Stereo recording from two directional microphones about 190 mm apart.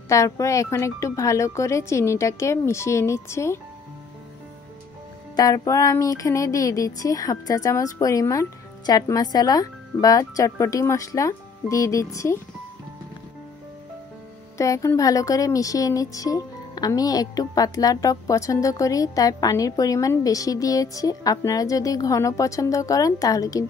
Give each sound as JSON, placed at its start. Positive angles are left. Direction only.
{"t": 0.1, "sound": "speech", "side_deg": 15}
{"t": 5.3, "sound": "speech", "side_deg": 20}
{"t": 14.6, "sound": "speech", "side_deg": 15}